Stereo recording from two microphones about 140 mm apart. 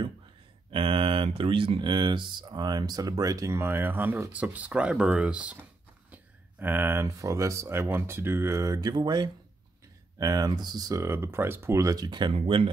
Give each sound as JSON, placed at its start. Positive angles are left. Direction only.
{"t": 0.7, "sound": "speech", "side_deg": -40}